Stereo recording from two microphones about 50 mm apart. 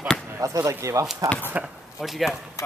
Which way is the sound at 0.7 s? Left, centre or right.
Right.